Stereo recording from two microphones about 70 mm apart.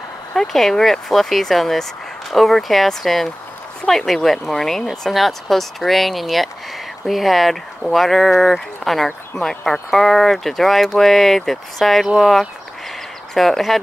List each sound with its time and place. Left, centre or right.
0.3 s speech: centre